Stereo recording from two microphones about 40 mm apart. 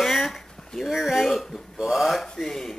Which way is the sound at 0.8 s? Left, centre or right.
Centre.